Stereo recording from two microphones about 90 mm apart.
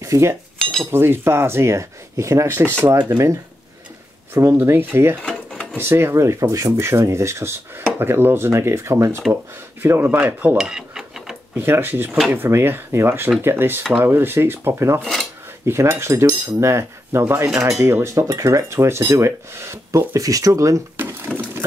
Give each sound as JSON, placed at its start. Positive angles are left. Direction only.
{"t": 0.0, "sound": "speech", "side_deg": -35}
{"t": 3.1, "sound": "cutlery", "side_deg": -30}
{"t": 4.3, "sound": "speech", "side_deg": -30}
{"t": 5.2, "sound": "drawer open or close", "side_deg": 10}
{"t": 5.8, "sound": "cutlery", "side_deg": -25}
{"t": 8.0, "sound": "speech", "side_deg": -25}
{"t": 11.5, "sound": "speech", "side_deg": -25}
{"t": 15.0, "sound": "dishes", "side_deg": 5}
{"t": 15.6, "sound": "cutlery", "side_deg": -30}
{"t": 20.2, "sound": "cutlery", "side_deg": -40}
{"t": 21.0, "sound": "a sound", "side_deg": -25}